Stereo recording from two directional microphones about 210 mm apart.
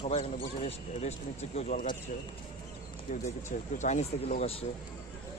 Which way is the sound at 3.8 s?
35° left (ahead or behind).